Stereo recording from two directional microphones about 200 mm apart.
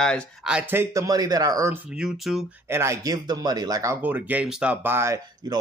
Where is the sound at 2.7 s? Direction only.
15° right (ahead or behind).